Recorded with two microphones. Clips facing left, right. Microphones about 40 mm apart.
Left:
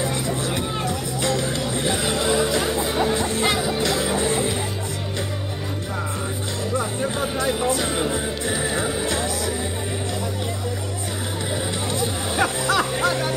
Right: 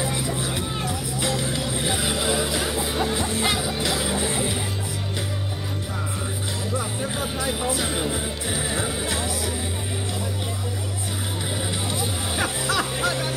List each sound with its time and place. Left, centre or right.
0.0 s music: centre
6.8 s music: centre
11.9 s music: centre